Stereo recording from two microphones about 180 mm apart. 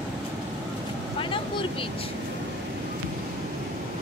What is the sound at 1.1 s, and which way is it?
Vehicle, 30° left (ahead or behind).